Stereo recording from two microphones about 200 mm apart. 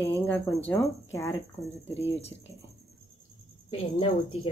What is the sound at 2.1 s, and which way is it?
Speech, 30° left (ahead or behind).